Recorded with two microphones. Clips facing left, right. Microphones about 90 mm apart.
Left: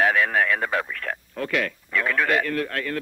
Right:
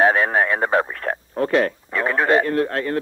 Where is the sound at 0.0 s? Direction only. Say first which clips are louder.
Right 4 dB; 30° right (ahead or behind).